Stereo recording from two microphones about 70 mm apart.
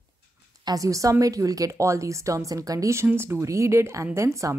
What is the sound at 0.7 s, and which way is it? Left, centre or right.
A woman's voice, right.